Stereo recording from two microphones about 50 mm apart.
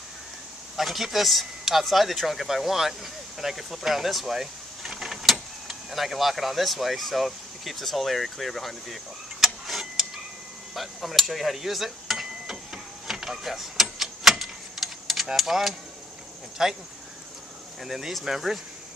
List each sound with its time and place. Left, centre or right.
0.7 s speech: centre
10.7 s cutlery: centre
16.6 s speech: centre
17.8 s speech: centre